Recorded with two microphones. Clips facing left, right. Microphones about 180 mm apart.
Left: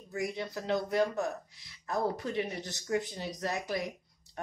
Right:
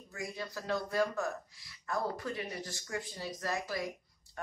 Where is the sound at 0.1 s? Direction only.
20° left (ahead or behind).